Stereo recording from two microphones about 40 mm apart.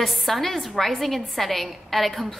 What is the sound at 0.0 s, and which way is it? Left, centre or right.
A woman's voice, centre.